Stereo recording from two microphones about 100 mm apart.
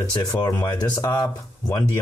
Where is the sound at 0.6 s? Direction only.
40° left (ahead or behind).